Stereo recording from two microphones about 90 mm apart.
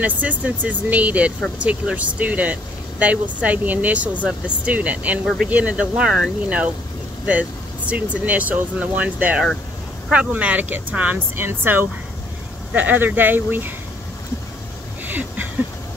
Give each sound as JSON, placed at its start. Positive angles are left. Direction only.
{"t": 0.0, "sound": "speech", "side_deg": -15}
{"t": 5.2, "sound": "speech", "side_deg": 0}
{"t": 5.5, "sound": "speech", "side_deg": -15}
{"t": 15.0, "sound": "a sound", "side_deg": -20}